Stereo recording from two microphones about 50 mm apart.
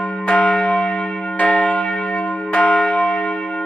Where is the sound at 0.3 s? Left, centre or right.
Left.